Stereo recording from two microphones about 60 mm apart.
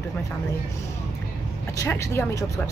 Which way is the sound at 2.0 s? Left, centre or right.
Left.